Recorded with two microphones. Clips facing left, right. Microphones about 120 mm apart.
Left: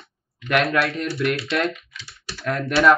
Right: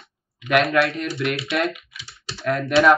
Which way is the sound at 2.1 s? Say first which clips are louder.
Right 1 dB; 25° right (ahead or behind).